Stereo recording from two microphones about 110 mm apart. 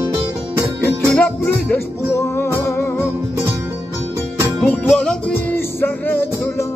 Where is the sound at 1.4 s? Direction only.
25° left (ahead or behind).